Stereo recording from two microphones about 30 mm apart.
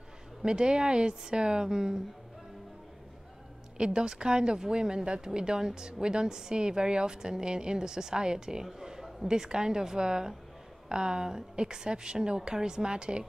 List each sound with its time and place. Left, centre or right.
0.5 s a woman's voice: right
3.7 s a woman's voice: right